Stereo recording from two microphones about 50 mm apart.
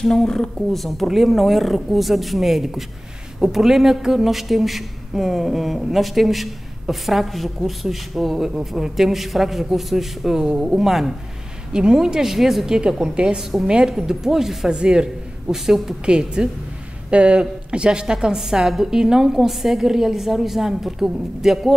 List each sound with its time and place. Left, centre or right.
0.0 s a woman's voice: centre
14.8 s a woman's voice: centre